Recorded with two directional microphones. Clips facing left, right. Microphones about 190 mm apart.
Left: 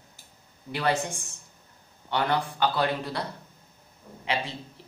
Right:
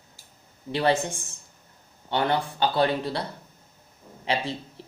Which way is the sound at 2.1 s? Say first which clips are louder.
Right 2 dB; 30° right (ahead or behind).